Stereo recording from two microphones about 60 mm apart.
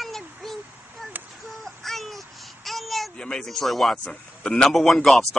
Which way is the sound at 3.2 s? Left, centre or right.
Centre.